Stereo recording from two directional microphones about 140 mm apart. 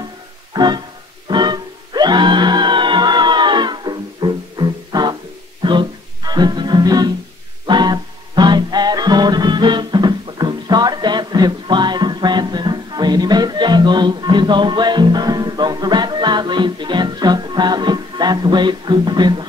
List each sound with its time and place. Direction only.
0.5 s music: 30° right (ahead or behind)